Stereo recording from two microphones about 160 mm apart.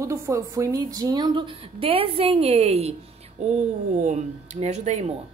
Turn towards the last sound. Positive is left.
turn(degrees=-45)  # may be behind; listen again after turning